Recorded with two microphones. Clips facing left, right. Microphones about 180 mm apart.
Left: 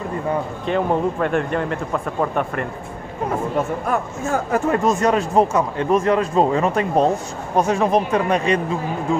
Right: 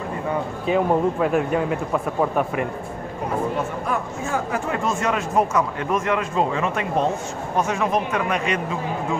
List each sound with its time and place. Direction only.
0.7 s speech: 5° right (ahead or behind)
3.9 s speech: 45° left (ahead or behind)